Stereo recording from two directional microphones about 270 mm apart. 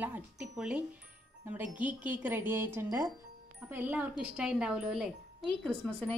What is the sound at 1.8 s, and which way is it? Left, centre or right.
Music, centre.